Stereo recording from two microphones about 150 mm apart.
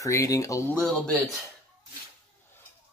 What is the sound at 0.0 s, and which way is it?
Speech, 20° left (ahead or behind).